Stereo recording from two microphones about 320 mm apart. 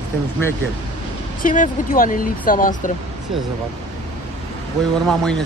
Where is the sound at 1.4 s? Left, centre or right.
Left.